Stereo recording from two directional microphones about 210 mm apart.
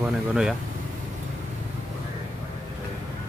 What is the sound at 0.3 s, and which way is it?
Speech, centre (ahead or behind).